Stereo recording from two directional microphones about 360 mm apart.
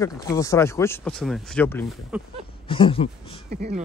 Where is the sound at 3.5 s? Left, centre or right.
Right.